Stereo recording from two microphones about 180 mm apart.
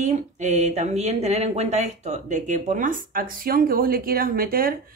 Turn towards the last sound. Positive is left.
turn(degrees=-55)  # may be behind; listen again after turning